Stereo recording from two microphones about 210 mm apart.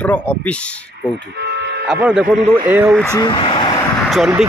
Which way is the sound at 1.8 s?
5° right (ahead or behind).